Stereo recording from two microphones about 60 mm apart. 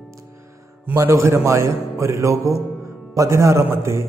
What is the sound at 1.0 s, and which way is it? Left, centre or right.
A man's voice, right.